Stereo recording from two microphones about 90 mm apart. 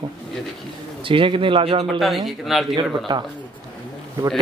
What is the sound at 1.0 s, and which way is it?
Speech, 75° right (ahead or behind).